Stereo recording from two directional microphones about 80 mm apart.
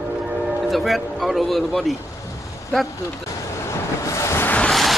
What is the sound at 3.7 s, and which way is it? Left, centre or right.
Vehicle, left.